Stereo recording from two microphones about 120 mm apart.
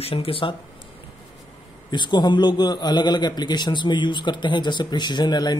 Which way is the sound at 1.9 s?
40° left (ahead or behind).